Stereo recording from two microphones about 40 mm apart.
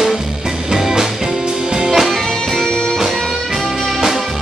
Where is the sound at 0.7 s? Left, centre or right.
Centre.